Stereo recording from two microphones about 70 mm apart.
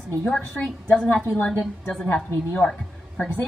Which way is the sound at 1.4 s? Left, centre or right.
Centre.